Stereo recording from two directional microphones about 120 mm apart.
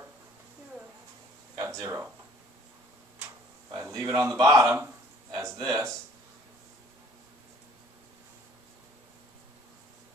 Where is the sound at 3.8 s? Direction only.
25° right (ahead or behind).